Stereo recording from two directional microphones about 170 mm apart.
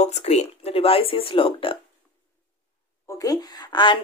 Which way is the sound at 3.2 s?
20° left (ahead or behind).